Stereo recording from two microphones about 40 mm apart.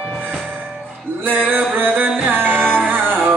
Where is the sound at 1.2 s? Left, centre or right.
Right.